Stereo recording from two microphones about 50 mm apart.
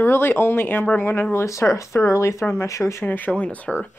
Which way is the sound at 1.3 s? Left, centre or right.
Left.